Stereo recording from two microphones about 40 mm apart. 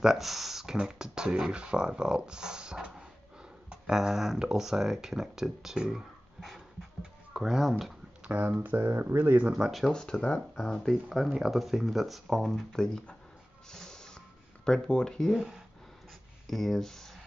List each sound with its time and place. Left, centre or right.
0.0 s speech: centre
4.1 s speech: centre
8.2 s a sound: right
8.6 s speech: right
9.4 s speech: right
9.7 s speech: centre
9.9 s speech: centre
11.1 s speech: centre
12.7 s speech: centre
13.7 s music: centre
14.6 s speech: left
15.3 s speech: centre
16.4 s speech: centre